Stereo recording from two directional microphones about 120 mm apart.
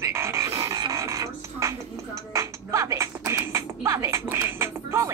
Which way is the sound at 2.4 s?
25° right (ahead or behind).